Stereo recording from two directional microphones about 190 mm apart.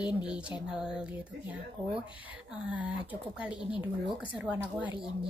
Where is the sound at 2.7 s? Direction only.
10° right (ahead or behind).